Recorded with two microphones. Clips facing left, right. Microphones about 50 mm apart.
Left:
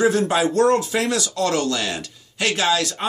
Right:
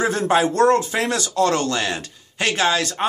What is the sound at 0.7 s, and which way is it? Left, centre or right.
Speech, right.